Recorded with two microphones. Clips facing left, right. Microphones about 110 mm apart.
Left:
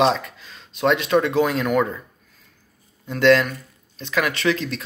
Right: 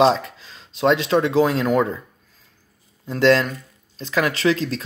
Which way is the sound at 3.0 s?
30° right (ahead or behind).